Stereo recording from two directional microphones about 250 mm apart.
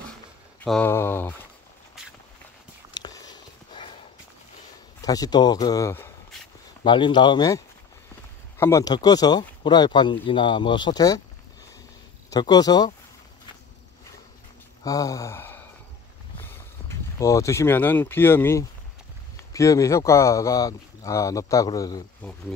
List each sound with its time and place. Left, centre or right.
0.7 s speech: centre
2.9 s a sound: centre
5.0 s speech: centre
12.3 s speech: centre
14.8 s a sound: centre
17.2 s speech: centre